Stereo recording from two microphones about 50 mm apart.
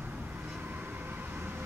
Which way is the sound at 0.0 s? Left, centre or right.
Right.